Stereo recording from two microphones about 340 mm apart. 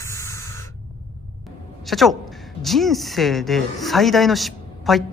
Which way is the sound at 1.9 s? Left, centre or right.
Centre.